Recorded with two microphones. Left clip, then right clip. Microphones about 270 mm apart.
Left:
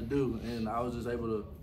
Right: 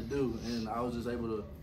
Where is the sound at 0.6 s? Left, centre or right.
Centre.